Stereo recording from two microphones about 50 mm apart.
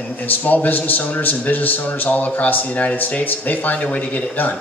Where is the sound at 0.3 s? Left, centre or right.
Left.